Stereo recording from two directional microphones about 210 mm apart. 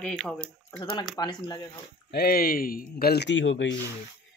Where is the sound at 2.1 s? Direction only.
45° left (ahead or behind).